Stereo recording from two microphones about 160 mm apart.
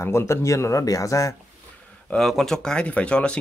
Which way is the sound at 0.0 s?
15° left (ahead or behind).